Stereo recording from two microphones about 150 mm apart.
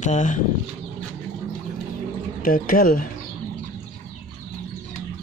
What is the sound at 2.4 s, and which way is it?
Speech, 70° left (ahead or behind).